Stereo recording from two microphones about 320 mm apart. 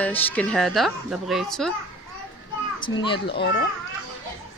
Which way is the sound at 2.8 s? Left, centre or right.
Centre.